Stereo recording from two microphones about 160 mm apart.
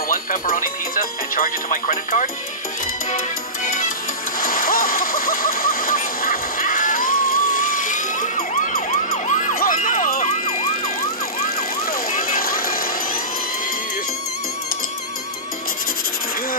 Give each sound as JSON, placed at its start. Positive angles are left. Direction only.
{"t": 0.1, "sound": "speech", "side_deg": 60}
{"t": 4.4, "sound": "a sound", "side_deg": 60}
{"t": 12.1, "sound": "vehicle", "side_deg": 60}